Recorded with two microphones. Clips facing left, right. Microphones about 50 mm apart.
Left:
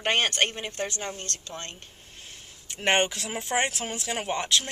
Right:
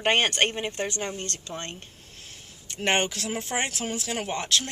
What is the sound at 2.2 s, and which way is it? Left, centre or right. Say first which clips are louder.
Speech: left 1 dB; centre.